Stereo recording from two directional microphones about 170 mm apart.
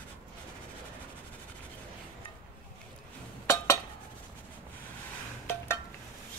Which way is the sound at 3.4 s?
15° left (ahead or behind).